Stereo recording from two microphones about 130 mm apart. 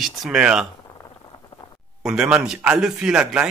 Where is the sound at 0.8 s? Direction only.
30° left (ahead or behind).